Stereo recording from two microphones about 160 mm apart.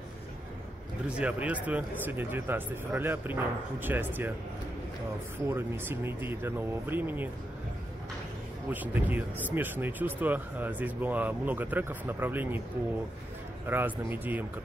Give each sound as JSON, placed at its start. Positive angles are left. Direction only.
{"t": 1.0, "sound": "speech", "side_deg": -10}
{"t": 5.5, "sound": "speech", "side_deg": -15}
{"t": 8.6, "sound": "speech", "side_deg": -10}
{"t": 13.7, "sound": "speech", "side_deg": -15}